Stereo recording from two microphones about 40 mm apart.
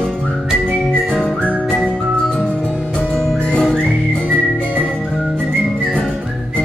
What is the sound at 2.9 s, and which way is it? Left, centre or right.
Music, centre.